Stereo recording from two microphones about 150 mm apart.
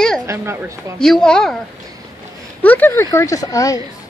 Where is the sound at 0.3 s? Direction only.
20° right (ahead or behind).